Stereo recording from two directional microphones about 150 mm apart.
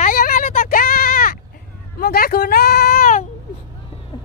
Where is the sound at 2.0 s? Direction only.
85° left.